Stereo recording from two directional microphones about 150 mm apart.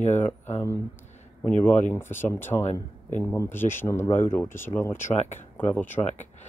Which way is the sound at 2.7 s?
55° left (ahead or behind).